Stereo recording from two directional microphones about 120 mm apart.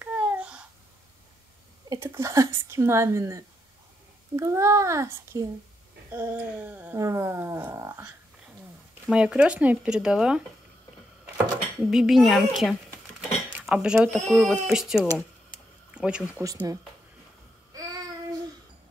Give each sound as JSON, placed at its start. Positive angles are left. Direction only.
{"t": 0.0, "sound": "babbling", "side_deg": -10}
{"t": 1.9, "sound": "a child's voice", "side_deg": -25}
{"t": 9.0, "sound": "speech", "side_deg": -10}
{"t": 11.8, "sound": "speech", "side_deg": -5}
{"t": 13.5, "sound": "a sound", "side_deg": -15}
{"t": 13.7, "sound": "speech", "side_deg": -5}
{"t": 15.5, "sound": "a sound", "side_deg": -35}
{"t": 15.9, "sound": "a sound", "side_deg": -5}
{"t": 16.3, "sound": "a child's voice", "side_deg": -30}